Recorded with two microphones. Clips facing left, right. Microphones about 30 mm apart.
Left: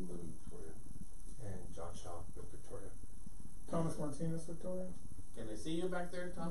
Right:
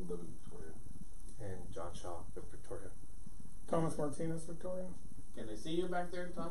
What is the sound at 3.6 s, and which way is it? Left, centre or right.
Speech, right.